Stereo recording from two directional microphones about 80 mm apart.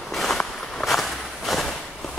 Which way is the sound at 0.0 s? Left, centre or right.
Centre.